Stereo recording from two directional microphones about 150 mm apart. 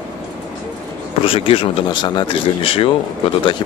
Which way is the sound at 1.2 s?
40° left (ahead or behind).